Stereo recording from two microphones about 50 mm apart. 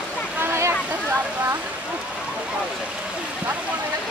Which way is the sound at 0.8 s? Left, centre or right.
Right.